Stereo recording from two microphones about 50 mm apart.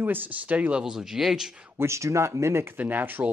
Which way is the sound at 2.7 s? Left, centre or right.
Right.